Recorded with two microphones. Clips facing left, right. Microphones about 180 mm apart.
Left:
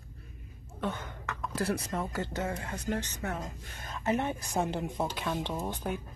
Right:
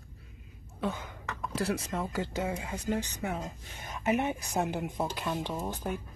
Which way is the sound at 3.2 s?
Centre (ahead or behind).